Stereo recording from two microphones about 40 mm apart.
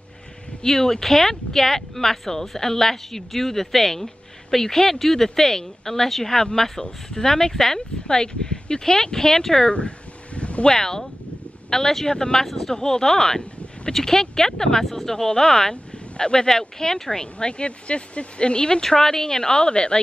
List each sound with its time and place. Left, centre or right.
0.6 s speech: centre
9.7 s a sound: left
10.6 s speech: centre
12.4 s speech: centre
12.7 s speech: centre